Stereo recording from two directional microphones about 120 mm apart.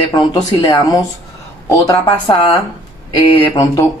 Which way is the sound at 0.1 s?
30° left (ahead or behind).